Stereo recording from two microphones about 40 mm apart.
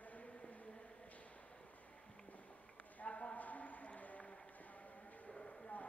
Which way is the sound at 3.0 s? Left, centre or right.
Left.